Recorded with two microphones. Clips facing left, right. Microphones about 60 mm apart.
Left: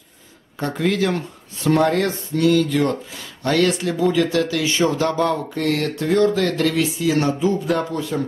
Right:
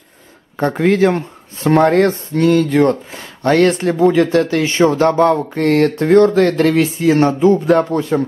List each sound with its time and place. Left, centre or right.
0.6 s speech: right